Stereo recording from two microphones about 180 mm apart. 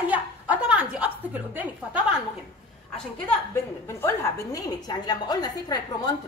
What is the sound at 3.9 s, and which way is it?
A woman's voice, 15° left (ahead or behind).